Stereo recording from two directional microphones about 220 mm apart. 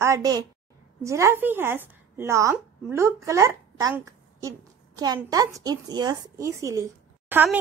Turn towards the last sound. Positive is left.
turn(degrees=-10)  # may be behind; listen again after turning